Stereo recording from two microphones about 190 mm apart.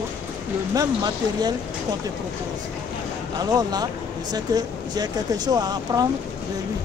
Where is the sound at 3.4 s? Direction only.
20° right (ahead or behind).